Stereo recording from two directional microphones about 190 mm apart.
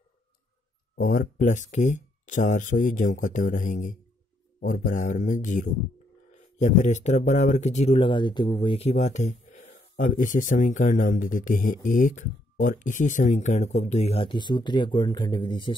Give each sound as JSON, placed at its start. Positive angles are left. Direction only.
{"t": 0.9, "sound": "speech", "side_deg": 45}